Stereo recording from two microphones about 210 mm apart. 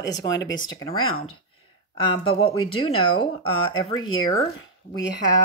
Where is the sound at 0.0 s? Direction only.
15° left (ahead or behind).